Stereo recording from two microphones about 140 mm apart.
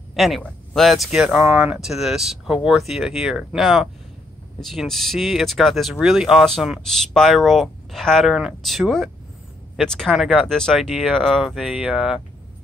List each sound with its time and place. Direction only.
0.1 s speech: centre (ahead or behind)